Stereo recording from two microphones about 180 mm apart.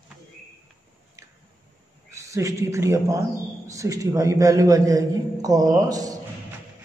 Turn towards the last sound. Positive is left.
turn(degrees=-20)  # may be behind; listen again after turning